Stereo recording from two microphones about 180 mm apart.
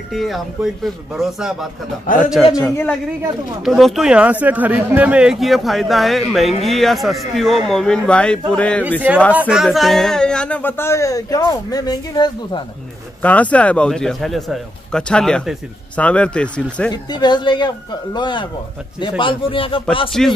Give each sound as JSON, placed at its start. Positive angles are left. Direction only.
{"t": 0.1, "sound": "speech", "side_deg": 0}
{"t": 2.0, "sound": "a man's voice", "side_deg": 45}
{"t": 2.6, "sound": "speech", "side_deg": 5}
{"t": 9.3, "sound": "speech", "side_deg": -5}
{"t": 13.2, "sound": "speech", "side_deg": 10}
{"t": 16.9, "sound": "speech", "side_deg": 25}
{"t": 20.1, "sound": "speech", "side_deg": 0}